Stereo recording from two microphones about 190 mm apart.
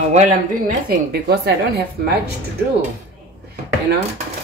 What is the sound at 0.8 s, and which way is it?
Speech, 55° right (ahead or behind).